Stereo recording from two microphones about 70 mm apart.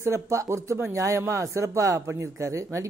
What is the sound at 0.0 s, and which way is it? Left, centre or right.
Speech, right.